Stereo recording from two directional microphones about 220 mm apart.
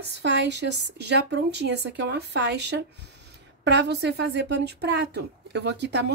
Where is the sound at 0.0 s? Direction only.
50° right (ahead or behind).